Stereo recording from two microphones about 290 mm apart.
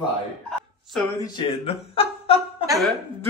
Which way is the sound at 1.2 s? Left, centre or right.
Centre.